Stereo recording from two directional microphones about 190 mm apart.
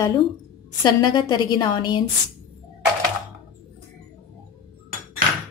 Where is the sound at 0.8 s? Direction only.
25° left (ahead or behind).